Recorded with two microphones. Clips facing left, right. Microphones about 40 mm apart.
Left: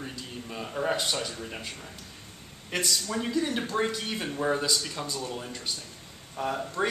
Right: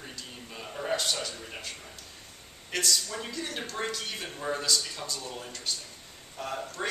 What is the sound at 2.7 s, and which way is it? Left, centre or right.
Speech, centre.